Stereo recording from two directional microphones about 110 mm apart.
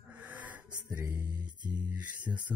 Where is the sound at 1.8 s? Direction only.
15° right (ahead or behind).